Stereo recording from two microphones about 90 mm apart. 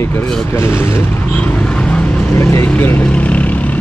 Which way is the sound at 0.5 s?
30° left (ahead or behind).